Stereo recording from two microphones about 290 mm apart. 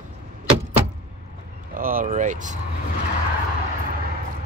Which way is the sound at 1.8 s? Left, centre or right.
Right.